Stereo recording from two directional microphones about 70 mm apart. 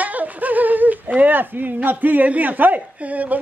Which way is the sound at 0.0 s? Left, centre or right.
Right.